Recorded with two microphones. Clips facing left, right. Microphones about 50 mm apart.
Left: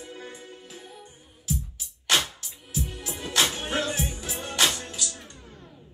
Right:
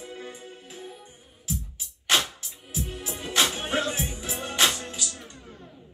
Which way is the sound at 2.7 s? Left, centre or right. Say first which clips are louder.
Even; right.